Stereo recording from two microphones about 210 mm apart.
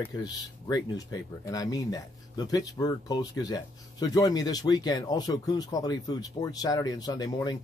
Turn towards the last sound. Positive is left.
turn(degrees=20)  # may be behind; listen again after turning